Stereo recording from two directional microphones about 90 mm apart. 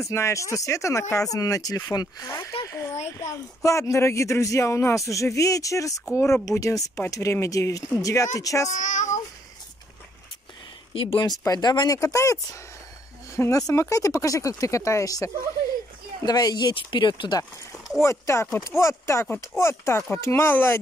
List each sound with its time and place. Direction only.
0.0 s speech: 35° left (ahead or behind)
2.2 s speech: 35° left (ahead or behind)
10.9 s speech: 90° left
11.1 s speech: 45° left (ahead or behind)
12.0 s speech: 35° left (ahead or behind)
13.4 s speech: 40° left (ahead or behind); by 17.4 s 60° left (ahead or behind)
18.0 s speech: 35° left (ahead or behind)